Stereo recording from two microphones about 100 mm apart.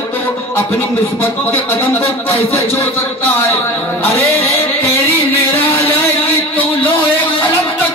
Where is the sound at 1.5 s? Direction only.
20° left (ahead or behind).